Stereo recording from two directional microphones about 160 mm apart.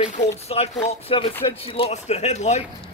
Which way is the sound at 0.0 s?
45° left (ahead or behind).